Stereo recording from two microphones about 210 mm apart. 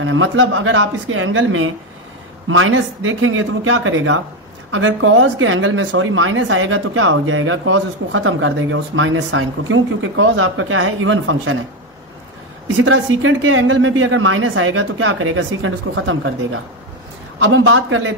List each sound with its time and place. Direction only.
0.0 s speech: 70° right (ahead or behind)
12.7 s speech: 70° right (ahead or behind)
17.4 s speech: 70° right (ahead or behind)